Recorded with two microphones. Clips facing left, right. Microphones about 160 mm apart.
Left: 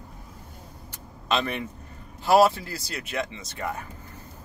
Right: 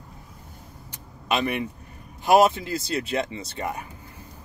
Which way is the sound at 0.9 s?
15° right (ahead or behind).